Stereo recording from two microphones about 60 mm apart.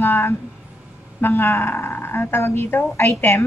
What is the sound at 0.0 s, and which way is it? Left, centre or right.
A woman's voice, left.